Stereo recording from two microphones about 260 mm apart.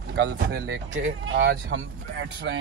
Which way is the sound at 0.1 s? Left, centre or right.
Right.